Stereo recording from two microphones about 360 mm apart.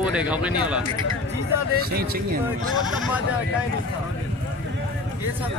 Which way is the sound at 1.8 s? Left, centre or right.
Right.